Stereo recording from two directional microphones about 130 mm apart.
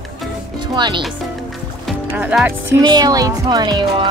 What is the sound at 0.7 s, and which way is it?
Speech, 35° right (ahead or behind).